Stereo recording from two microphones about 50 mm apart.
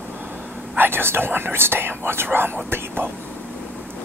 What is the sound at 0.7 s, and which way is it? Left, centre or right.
Speech, right.